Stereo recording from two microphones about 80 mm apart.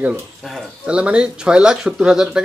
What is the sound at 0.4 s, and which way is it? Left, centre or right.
Speech, centre.